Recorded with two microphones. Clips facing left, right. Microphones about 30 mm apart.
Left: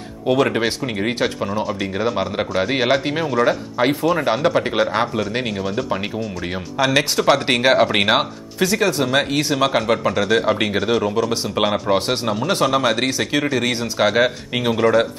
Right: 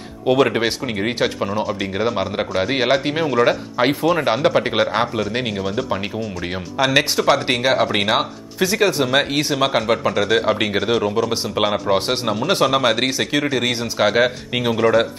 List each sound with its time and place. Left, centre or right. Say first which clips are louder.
0.3 s speech: right 1 dB; centre
3.9 s speech: right 1 dB; centre
7.2 s speech: left 1 dB; centre
8.6 s speech: right 1 dB; centre